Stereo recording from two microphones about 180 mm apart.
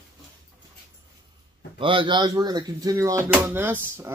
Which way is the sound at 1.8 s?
30° right (ahead or behind).